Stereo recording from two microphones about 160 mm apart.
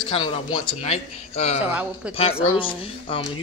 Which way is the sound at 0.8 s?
40° left (ahead or behind).